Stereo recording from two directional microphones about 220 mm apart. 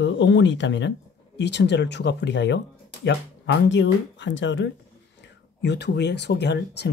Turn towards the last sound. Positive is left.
turn(degrees=50)  # may be behind; listen again after turning